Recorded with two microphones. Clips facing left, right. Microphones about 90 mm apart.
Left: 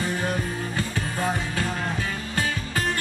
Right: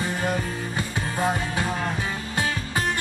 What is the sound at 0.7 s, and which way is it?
Music, 20° right (ahead or behind).